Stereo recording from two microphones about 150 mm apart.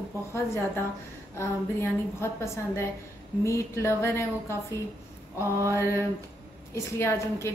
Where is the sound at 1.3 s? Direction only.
15° left (ahead or behind).